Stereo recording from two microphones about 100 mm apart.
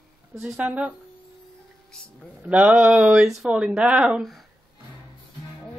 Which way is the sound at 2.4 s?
15° right (ahead or behind).